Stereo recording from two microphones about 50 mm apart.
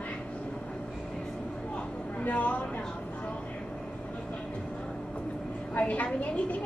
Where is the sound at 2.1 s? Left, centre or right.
Left.